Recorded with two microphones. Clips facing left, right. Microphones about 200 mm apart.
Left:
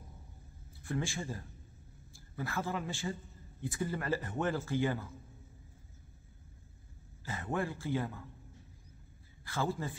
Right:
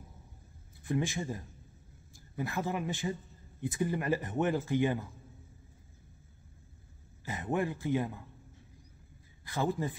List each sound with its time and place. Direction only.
0.8 s a man's voice: 20° right (ahead or behind)
7.2 s speech: 15° right (ahead or behind)
9.4 s speech: 15° right (ahead or behind)